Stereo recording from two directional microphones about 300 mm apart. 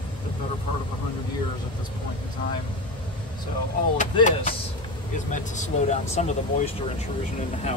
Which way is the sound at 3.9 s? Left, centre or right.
Left.